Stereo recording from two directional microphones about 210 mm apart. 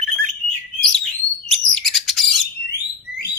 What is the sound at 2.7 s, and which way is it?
Alarm, 50° left (ahead or behind).